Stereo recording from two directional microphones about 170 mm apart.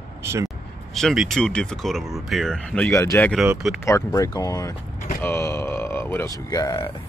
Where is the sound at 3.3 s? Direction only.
5° right (ahead or behind).